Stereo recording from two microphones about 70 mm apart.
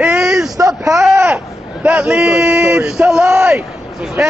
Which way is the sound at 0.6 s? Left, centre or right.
Right.